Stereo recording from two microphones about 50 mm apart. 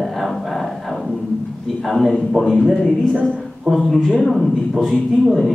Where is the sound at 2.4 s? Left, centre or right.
Centre.